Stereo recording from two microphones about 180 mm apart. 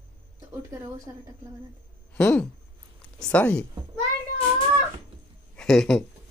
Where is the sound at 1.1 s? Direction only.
15° right (ahead or behind).